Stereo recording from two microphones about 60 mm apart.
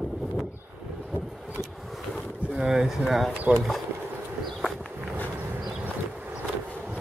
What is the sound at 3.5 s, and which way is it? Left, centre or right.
Speech, centre.